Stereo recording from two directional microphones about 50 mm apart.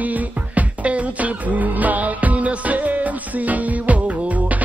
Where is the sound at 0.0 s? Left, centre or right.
Right.